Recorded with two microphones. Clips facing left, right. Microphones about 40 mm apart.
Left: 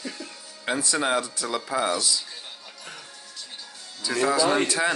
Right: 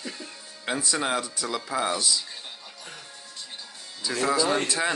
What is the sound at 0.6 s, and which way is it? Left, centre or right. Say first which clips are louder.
Speech: left 2 dB; centre.